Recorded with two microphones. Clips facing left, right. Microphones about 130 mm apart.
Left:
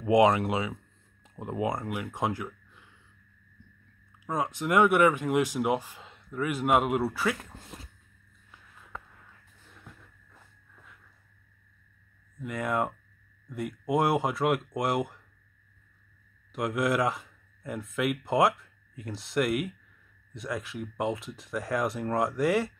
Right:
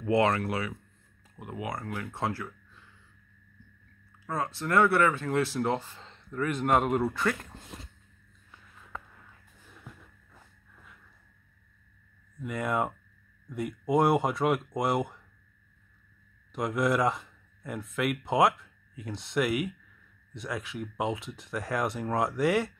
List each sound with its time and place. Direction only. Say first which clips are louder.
0.0 s speech: left 4 dB; 15° left (ahead or behind)
4.3 s speech: left 2 dB; 15° left (ahead or behind)
9.7 s music: right 2 dB; 5° right (ahead or behind)
12.4 s speech: even; centre (ahead or behind)
16.5 s speech: even; centre (ahead or behind)